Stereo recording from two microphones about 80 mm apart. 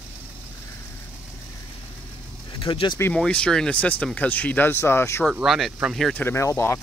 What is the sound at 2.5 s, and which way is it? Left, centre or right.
Speech, left.